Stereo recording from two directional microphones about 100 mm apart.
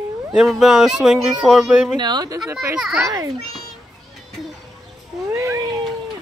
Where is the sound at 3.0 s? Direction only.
40° right (ahead or behind).